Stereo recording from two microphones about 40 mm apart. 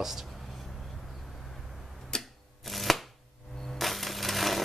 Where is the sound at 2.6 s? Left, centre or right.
Centre.